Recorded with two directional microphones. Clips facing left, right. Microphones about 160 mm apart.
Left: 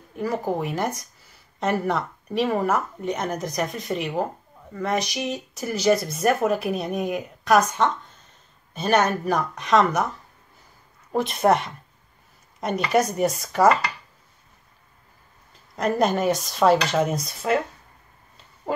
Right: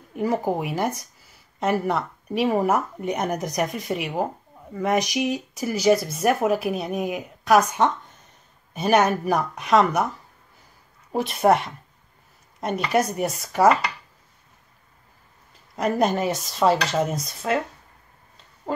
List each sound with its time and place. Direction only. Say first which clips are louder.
0.1 s speech: right 2 dB; 15° right (ahead or behind)
11.1 s speech: right 1 dB; 5° right (ahead or behind)
15.7 s speech: even; 5° right (ahead or behind)